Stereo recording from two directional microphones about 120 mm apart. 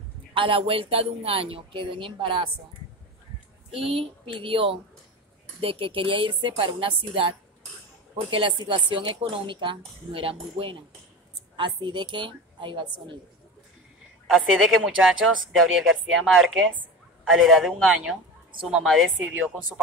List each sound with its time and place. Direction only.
0.3 s speech: 45° right (ahead or behind)
3.7 s a woman's voice: 50° right (ahead or behind)
14.3 s speech: 5° right (ahead or behind)
19.1 s speech: 10° right (ahead or behind)